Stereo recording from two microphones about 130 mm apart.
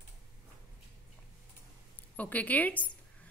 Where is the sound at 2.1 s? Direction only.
10° left (ahead or behind).